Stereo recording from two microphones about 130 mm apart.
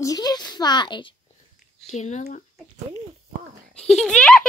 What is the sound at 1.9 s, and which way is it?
Speech, 65° left (ahead or behind).